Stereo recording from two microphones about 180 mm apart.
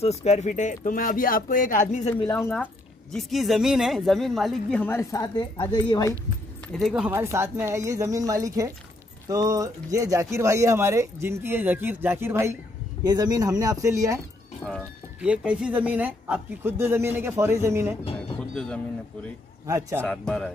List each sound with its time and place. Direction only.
0.0 s speech: 40° left (ahead or behind)
2.2 s speech: 15° left (ahead or behind)
2.5 s a woman's voice: 5° left (ahead or behind); by 6.1 s 25° left (ahead or behind)
6.7 s a woman's voice: centre (ahead or behind)
7.1 s speech: 15° right (ahead or behind)
14.6 s a woman's voice: 5° left (ahead or behind)
15.1 s speech: 5° right (ahead or behind)
18.5 s speech: 5° left (ahead or behind)
19.6 s speech: 15° right (ahead or behind)
20.0 s a woman's voice: 5° left (ahead or behind)